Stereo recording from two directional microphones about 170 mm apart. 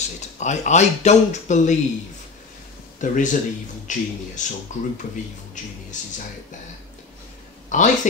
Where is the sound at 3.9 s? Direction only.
45° left (ahead or behind).